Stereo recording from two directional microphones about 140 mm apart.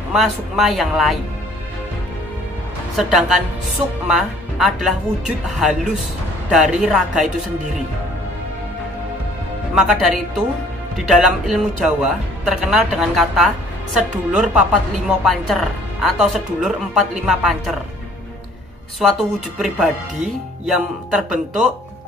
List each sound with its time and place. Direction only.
0.1 s a woman's voice: centre (ahead or behind)
3.0 s a woman's voice: 5° right (ahead or behind)
9.8 s a woman's voice: 5° right (ahead or behind)
18.9 s a woman's voice: centre (ahead or behind)